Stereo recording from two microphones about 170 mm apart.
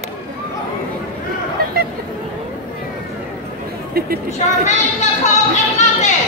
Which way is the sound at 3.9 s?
65° right (ahead or behind).